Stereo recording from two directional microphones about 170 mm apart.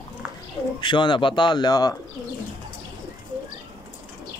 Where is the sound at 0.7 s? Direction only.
25° left (ahead or behind).